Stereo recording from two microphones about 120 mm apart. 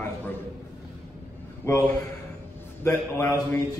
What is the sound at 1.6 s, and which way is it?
A man's voice, 20° left (ahead or behind).